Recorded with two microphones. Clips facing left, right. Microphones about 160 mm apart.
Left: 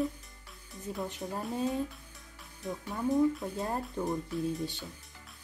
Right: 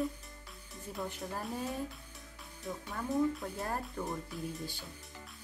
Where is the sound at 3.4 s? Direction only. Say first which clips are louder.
Left 3 dB; 20° left (ahead or behind).